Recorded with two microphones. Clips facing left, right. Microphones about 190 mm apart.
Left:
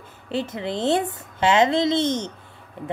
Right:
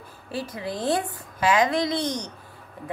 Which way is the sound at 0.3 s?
25° left (ahead or behind).